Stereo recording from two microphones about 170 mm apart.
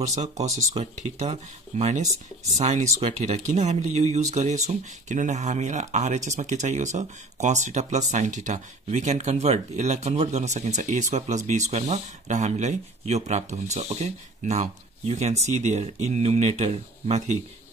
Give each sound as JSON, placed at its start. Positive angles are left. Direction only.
{"t": 0.0, "sound": "speech", "side_deg": -40}